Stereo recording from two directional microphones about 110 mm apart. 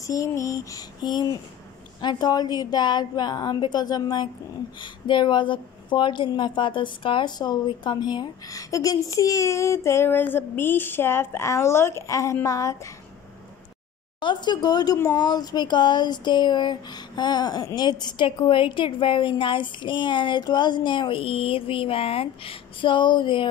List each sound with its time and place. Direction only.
0.0 s a woman's voice: 30° left (ahead or behind)
14.2 s a woman's voice: 45° left (ahead or behind)
15.1 s a sound: 40° left (ahead or behind)